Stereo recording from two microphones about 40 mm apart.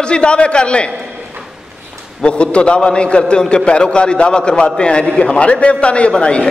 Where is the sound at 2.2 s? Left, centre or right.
Left.